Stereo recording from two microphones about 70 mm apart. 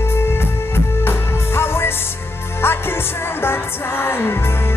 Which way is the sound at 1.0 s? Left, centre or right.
Left.